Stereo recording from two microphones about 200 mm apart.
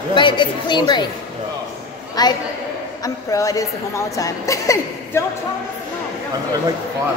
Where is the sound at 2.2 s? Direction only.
20° left (ahead or behind).